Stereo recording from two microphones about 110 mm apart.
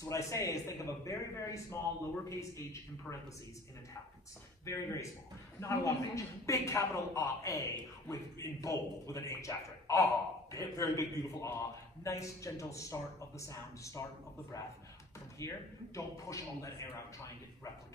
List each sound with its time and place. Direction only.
0.0 s a man's voice: 30° left (ahead or behind)
4.6 s a man's voice: 30° left (ahead or behind)
15.3 s a man's voice: 30° left (ahead or behind)